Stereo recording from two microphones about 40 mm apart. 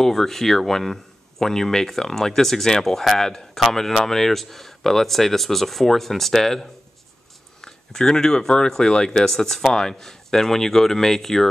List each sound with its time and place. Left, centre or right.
0.0 s speech: centre